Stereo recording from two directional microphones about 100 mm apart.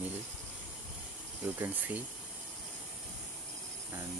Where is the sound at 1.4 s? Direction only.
20° right (ahead or behind).